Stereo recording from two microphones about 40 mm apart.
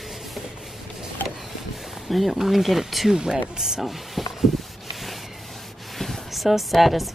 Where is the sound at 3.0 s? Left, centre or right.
Centre.